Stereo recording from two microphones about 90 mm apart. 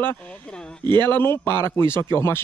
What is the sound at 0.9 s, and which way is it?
Speech, 25° left (ahead or behind).